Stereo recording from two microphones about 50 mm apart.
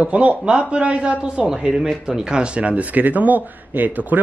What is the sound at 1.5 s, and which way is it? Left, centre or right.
Speech, centre.